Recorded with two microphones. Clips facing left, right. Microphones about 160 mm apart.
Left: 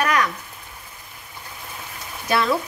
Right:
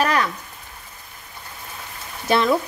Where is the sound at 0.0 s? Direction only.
30° right (ahead or behind).